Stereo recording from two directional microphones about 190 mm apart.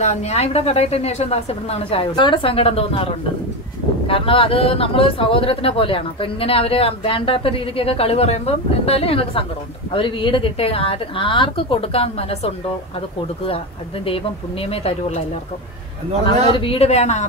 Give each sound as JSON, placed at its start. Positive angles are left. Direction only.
{"t": 0.0, "sound": "a woman's voice", "side_deg": 35}
{"t": 14.0, "sound": "a woman's voice", "side_deg": 30}
{"t": 16.4, "sound": "a woman's voice", "side_deg": 30}